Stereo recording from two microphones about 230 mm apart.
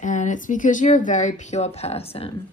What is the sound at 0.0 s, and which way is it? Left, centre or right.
Speech, left.